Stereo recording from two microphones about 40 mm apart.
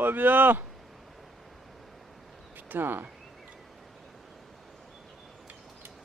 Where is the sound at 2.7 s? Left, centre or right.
Right.